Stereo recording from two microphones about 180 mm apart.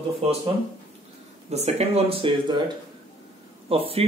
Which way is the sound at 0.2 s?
35° right (ahead or behind).